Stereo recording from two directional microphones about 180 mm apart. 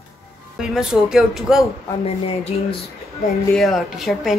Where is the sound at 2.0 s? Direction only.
35° left (ahead or behind).